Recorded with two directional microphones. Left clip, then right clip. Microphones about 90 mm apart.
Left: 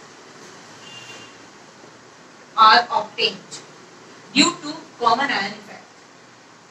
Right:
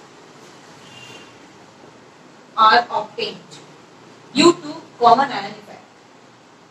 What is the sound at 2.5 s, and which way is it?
A woman's voice, 30° left (ahead or behind).